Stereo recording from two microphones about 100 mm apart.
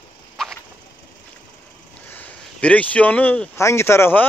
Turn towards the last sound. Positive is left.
turn(degrees=20)  # may be behind; listen again after turning